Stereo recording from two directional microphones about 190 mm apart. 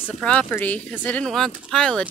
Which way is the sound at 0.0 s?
5° left (ahead or behind).